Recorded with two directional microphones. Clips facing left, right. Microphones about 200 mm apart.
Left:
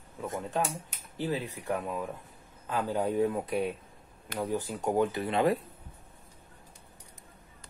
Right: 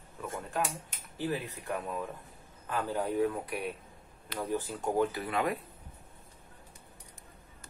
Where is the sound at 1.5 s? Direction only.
15° left (ahead or behind).